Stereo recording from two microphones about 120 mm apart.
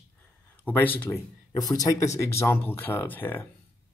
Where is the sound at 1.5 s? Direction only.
30° left (ahead or behind).